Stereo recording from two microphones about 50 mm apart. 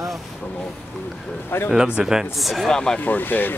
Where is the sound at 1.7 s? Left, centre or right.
Centre.